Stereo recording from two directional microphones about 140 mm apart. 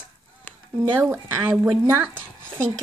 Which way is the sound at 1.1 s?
15° right (ahead or behind).